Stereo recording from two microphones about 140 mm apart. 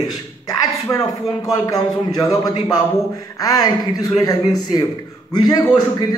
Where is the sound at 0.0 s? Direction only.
25° left (ahead or behind).